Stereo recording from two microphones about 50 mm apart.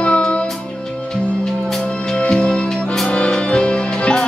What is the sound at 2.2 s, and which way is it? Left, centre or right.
Music, centre.